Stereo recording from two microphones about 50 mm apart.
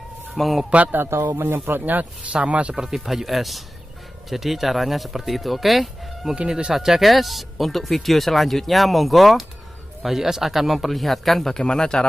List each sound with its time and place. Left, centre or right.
0.3 s speech: centre
1.3 s speech: right
1.7 s speech: right
2.3 s speech: right
2.7 s speech: centre
3.1 s speech: centre
6.3 s speech: centre
6.7 s speech: centre